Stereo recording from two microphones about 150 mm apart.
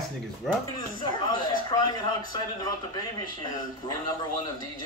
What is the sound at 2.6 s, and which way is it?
Speech, 25° left (ahead or behind).